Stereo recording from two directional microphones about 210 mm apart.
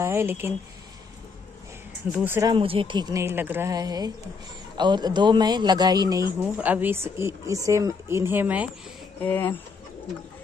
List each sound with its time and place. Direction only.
0.0 s a man's voice: 10° right (ahead or behind)
2.1 s a man's voice: 10° right (ahead or behind)
2.5 s a man's voice: 25° right (ahead or behind); by 8.6 s 10° right (ahead or behind)
9.2 s speech: 10° left (ahead or behind)